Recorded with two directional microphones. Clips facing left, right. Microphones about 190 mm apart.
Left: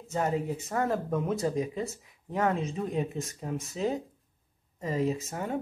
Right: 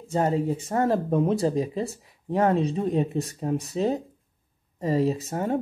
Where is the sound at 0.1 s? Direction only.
30° right (ahead or behind).